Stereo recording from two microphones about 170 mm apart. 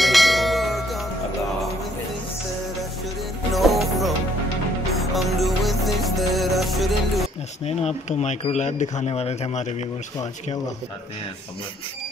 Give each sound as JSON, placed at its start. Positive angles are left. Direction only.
{"t": 0.0, "sound": "bell", "side_deg": 0}
{"t": 3.5, "sound": "music", "side_deg": 0}
{"t": 7.6, "sound": "speech", "side_deg": 40}